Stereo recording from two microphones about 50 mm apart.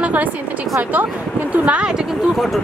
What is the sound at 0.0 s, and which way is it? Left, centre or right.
Speech, right.